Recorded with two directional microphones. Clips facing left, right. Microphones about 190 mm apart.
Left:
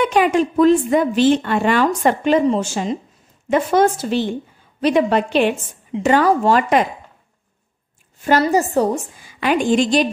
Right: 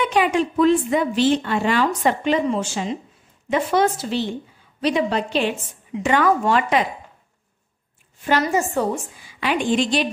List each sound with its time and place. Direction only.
0.0 s a woman's voice: 45° left (ahead or behind)
6.0 s speech: 35° left (ahead or behind)
8.2 s a woman's voice: 40° left (ahead or behind)